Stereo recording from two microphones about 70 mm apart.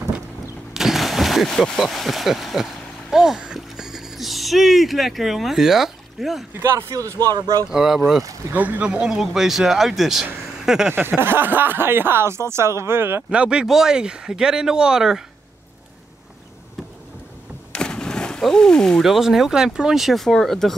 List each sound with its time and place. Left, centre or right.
0.7 s a sound: centre
6.6 s speech: right
7.0 s speech: right
7.7 s speech: centre
8.5 s speech: right
8.8 s speech: centre
10.6 s a sound: centre
10.9 s speech: right
13.3 s speech: centre
17.7 s speech: centre